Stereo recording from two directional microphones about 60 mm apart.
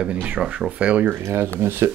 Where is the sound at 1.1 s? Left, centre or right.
Right.